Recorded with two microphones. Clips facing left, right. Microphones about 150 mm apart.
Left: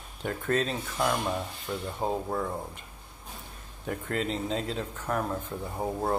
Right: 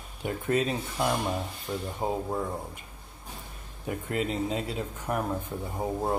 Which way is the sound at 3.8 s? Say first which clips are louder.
Right 1 dB; 10° right (ahead or behind).